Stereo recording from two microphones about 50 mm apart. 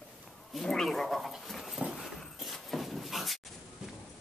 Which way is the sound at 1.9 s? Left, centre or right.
Centre.